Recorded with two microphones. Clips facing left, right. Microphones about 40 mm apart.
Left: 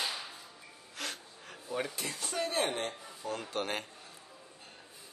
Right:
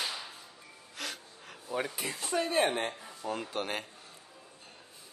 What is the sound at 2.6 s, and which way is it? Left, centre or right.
Speech, right.